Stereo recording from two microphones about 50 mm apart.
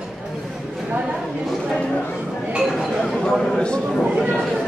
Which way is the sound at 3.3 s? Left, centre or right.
Centre.